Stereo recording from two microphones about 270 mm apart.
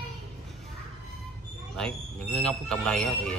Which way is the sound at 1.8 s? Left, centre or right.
Centre.